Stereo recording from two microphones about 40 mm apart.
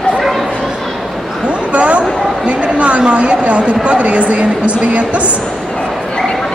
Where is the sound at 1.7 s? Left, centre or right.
Right.